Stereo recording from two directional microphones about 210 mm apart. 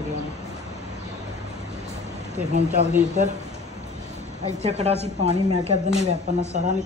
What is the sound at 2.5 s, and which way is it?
Speech, 35° right (ahead or behind).